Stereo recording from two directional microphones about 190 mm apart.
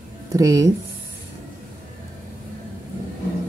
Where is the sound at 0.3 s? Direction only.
15° right (ahead or behind).